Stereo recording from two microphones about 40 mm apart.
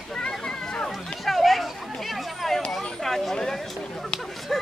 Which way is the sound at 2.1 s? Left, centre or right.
Centre.